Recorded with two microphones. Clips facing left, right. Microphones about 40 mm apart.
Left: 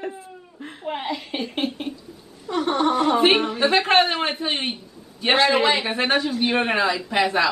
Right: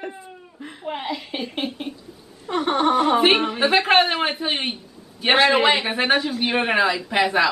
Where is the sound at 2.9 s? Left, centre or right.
Centre.